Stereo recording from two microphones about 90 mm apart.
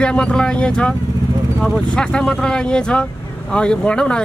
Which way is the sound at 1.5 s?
Centre (ahead or behind).